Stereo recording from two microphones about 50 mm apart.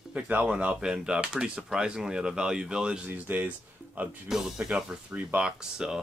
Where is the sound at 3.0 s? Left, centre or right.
Right.